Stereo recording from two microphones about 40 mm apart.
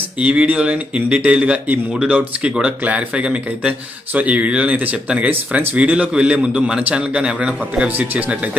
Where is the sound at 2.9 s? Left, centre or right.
Right.